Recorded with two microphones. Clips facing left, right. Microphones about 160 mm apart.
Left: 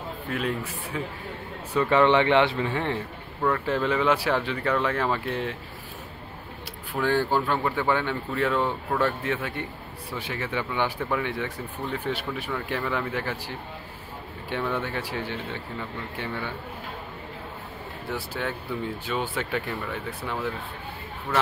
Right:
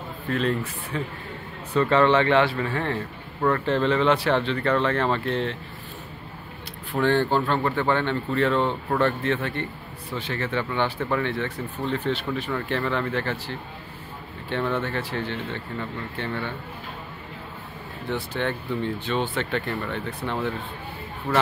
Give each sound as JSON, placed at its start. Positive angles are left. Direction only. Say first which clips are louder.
{"t": 0.3, "sound": "speech", "louder": "right 5 dB", "side_deg": 10}
{"t": 3.4, "sound": "speech", "louder": "right 3 dB", "side_deg": 5}
{"t": 7.0, "sound": "speech", "louder": "right 3 dB", "side_deg": 5}
{"t": 18.1, "sound": "speech", "louder": "right 4 dB", "side_deg": 5}